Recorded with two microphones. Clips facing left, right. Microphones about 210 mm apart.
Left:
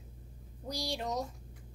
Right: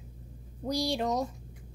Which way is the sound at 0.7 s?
75° right (ahead or behind).